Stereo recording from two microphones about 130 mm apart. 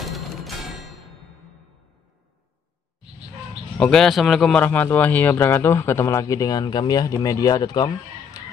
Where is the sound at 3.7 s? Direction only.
5° left (ahead or behind).